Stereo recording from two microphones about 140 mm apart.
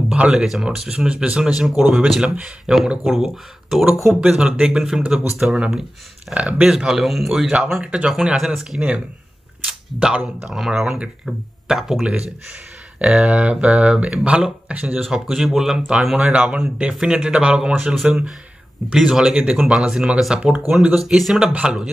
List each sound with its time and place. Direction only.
0.1 s speech: 10° right (ahead or behind)
4.0 s speech: centre (ahead or behind)